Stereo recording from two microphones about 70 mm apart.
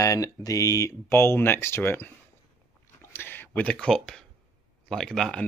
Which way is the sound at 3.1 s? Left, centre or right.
Left.